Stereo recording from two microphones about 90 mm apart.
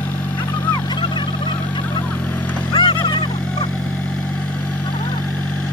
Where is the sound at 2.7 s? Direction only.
60° left (ahead or behind).